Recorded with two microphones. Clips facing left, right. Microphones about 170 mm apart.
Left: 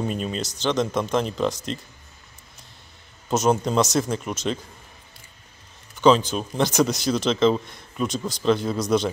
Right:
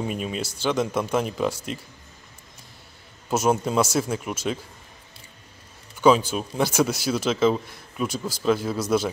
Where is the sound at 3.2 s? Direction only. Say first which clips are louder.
Left 1 dB; 5° right (ahead or behind).